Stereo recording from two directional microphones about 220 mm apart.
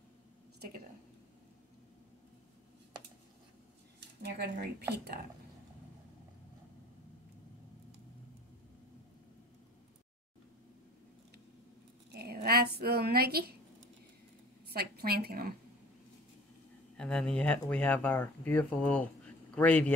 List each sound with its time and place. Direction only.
4.2 s speech: 50° right (ahead or behind)
12.1 s a sound: 45° right (ahead or behind)
14.7 s speech: 45° right (ahead or behind)
16.9 s speech: 5° left (ahead or behind)